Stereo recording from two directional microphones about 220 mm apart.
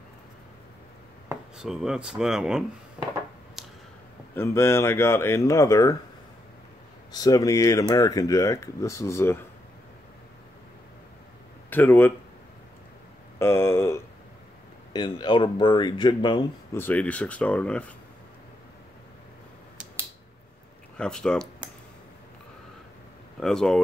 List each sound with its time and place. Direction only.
1.3 s speech: centre (ahead or behind)
3.0 s a sound: 5° right (ahead or behind)
4.4 s speech: 10° left (ahead or behind)
7.1 s speech: 15° left (ahead or behind)
11.7 s speech: 10° left (ahead or behind)
13.4 s a sound: 10° left (ahead or behind)
14.9 s speech: 20° left (ahead or behind)
16.7 s speech: 5° left (ahead or behind)
21.0 s speech: 5° left (ahead or behind)
23.4 s speech: centre (ahead or behind)